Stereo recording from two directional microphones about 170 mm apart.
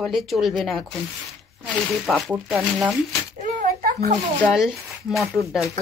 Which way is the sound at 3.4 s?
55° right (ahead or behind).